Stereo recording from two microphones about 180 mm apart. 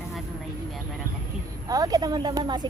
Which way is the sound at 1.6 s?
20° right (ahead or behind).